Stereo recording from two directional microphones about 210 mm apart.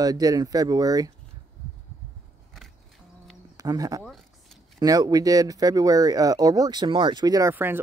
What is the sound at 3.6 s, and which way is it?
Speech, 15° right (ahead or behind).